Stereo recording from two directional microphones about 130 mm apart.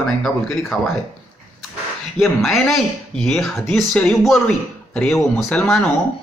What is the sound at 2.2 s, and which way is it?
Speech, centre (ahead or behind).